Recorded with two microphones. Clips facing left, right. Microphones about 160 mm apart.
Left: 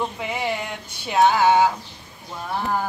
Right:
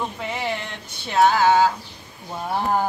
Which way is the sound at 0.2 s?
10° left (ahead or behind).